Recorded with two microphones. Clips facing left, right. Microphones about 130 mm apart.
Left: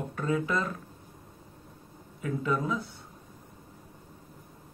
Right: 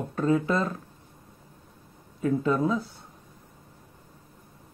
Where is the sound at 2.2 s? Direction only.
35° right (ahead or behind).